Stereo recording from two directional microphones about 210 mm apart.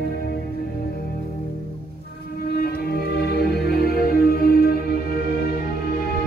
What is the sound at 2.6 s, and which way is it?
Music, 45° left (ahead or behind).